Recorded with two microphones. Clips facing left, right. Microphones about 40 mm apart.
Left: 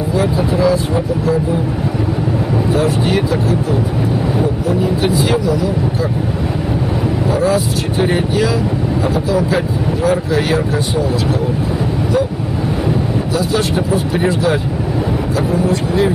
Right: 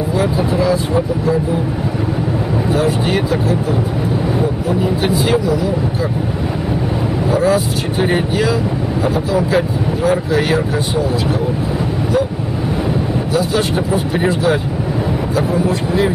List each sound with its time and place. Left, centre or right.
0.2 s speech: centre
2.7 s speech: centre
5.0 s speech: centre
7.3 s speech: centre
13.3 s speech: centre